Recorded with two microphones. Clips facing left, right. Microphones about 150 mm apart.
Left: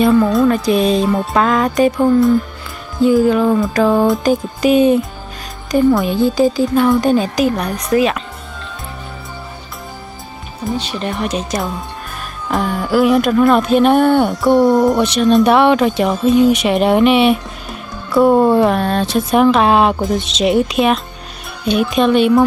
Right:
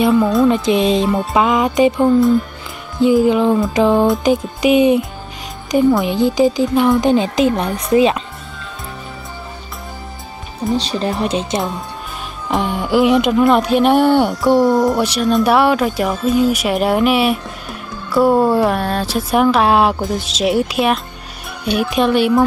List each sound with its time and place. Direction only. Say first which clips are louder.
0.0 s speech: left 1 dB; 5° right (ahead or behind)
0.5 s speech: even; 20° right (ahead or behind)
1.1 s speech: even; centre (ahead or behind)
1.4 s speech: even; 15° right (ahead or behind)
3.0 s speech: even; 15° right (ahead or behind)
3.9 s speech: left 1 dB; 5° right (ahead or behind)
4.6 s speech: left 1 dB; 15° right (ahead or behind)
10.8 s speech: right 2 dB; 35° right (ahead or behind)
12.5 s speech: even; 15° right (ahead or behind)